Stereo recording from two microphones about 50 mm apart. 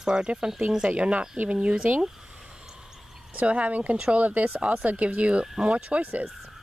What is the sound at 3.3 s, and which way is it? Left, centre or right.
Speech, right.